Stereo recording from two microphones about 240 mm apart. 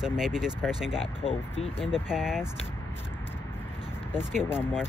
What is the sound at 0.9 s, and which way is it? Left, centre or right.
Speech, left.